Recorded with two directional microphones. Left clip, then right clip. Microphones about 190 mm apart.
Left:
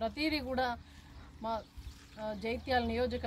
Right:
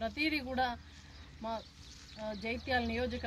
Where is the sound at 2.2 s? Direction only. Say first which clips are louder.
Left 2 dB; 15° left (ahead or behind).